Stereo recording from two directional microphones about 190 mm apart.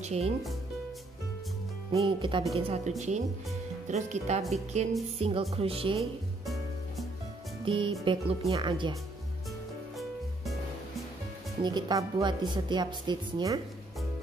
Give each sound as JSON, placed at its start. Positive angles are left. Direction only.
{"t": 0.0, "sound": "speech", "side_deg": -35}
{"t": 1.9, "sound": "a woman's voice", "side_deg": -25}
{"t": 3.9, "sound": "a woman's voice", "side_deg": -35}
{"t": 7.6, "sound": "a woman's voice", "side_deg": -25}
{"t": 11.6, "sound": "a woman's voice", "side_deg": -20}